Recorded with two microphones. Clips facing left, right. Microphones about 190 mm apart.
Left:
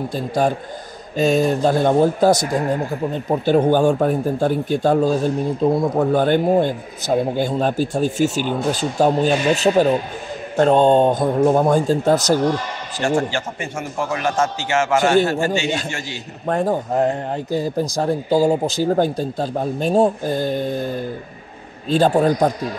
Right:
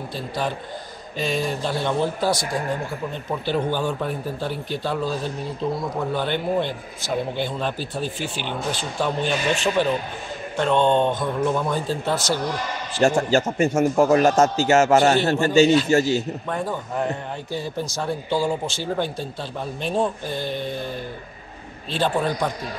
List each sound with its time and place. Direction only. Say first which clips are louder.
0.1 s a man's voice: left 7 dB; 45° left (ahead or behind)
13.0 s a man's voice: right 2 dB; 40° right (ahead or behind)
16.4 s a man's voice: left 7 dB; 45° left (ahead or behind)